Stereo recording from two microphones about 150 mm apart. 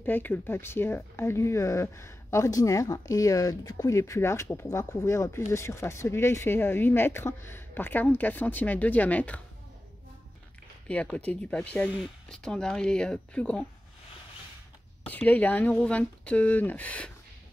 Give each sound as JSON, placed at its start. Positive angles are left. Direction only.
{"t": 0.0, "sound": "speech", "side_deg": 10}
{"t": 10.9, "sound": "speech", "side_deg": 10}
{"t": 15.0, "sound": "speech", "side_deg": 10}